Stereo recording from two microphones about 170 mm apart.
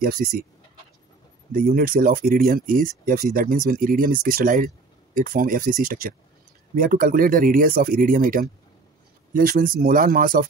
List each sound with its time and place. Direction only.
0.0 s speech: 60° right (ahead or behind)
1.5 s speech: 55° right (ahead or behind)